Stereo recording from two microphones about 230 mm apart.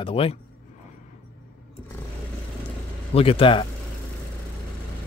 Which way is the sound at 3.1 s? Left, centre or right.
Left.